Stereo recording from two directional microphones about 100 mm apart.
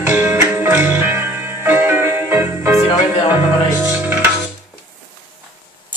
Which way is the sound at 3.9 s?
20° right (ahead or behind).